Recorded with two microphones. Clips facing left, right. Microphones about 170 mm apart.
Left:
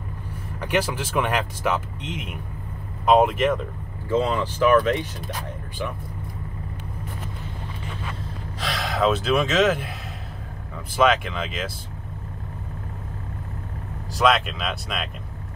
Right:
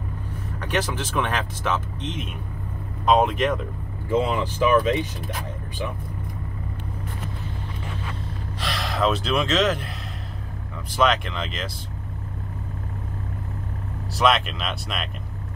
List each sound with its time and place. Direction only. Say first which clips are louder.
0.6 s speech: left 2 dB; 10° left (ahead or behind)
4.1 s speech: even; 15° right (ahead or behind)
8.5 s speech: left 1 dB; centre (ahead or behind)
11.0 s speech: left 2 dB; 5° left (ahead or behind)
14.1 s speech: left 1 dB; centre (ahead or behind)